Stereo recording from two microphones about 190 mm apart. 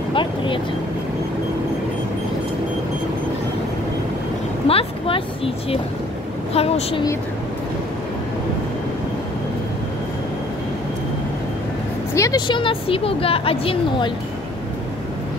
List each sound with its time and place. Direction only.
0.1 s vehicle: 25° left (ahead or behind)
4.6 s a sound: 30° left (ahead or behind)
6.5 s a woman's voice: 30° left (ahead or behind)
12.1 s speech: 15° left (ahead or behind)